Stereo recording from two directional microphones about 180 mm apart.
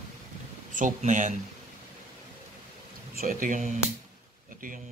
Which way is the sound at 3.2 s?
50° right (ahead or behind).